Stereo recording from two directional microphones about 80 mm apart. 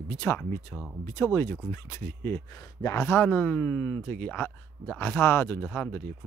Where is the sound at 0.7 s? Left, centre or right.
Centre.